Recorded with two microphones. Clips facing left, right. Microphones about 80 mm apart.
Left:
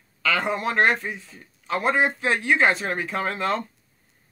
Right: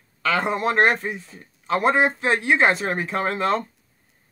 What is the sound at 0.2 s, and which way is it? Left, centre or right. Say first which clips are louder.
Speech: right 2 dB; right.